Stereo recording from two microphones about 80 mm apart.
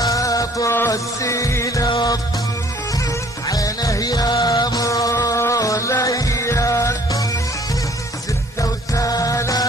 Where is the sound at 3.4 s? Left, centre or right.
Left.